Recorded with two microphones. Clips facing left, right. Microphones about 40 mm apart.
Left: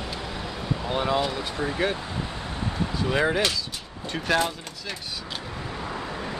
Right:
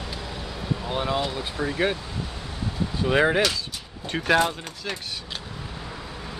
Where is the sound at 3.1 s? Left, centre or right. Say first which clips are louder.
Right 3 dB; centre.